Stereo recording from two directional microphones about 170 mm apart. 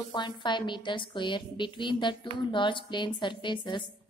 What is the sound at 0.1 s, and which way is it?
Speech, 25° left (ahead or behind).